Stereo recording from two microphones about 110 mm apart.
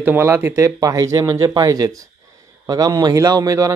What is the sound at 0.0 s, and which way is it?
Speech, 20° right (ahead or behind).